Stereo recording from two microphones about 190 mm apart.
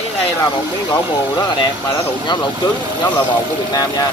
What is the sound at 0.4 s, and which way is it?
Speech, 25° left (ahead or behind).